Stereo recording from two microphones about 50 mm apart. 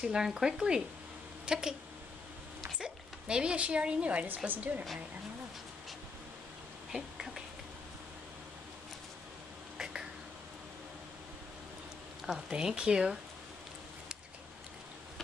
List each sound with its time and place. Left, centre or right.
0.0 s speech: centre
2.8 s a woman's voice: centre; by 4.8 s right
6.9 s a sound: centre
12.3 s speech: centre